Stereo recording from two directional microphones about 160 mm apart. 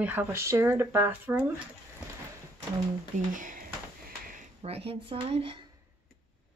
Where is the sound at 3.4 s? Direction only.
55° right (ahead or behind).